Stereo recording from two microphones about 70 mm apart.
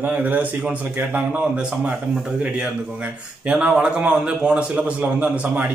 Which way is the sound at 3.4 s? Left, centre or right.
Centre.